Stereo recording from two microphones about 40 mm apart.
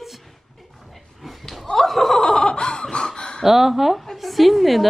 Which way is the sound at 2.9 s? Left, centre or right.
Left.